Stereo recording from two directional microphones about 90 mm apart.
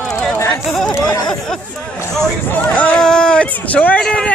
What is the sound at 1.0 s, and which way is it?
Speech, 50° left (ahead or behind).